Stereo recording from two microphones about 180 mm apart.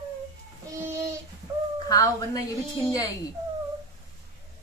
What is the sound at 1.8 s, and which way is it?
Speech, 20° left (ahead or behind).